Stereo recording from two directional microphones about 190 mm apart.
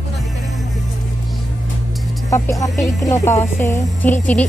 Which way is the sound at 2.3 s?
15° left (ahead or behind).